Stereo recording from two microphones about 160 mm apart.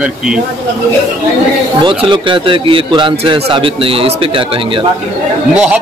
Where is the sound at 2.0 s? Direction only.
30° right (ahead or behind).